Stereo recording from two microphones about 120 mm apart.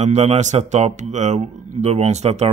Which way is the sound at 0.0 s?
65° right (ahead or behind).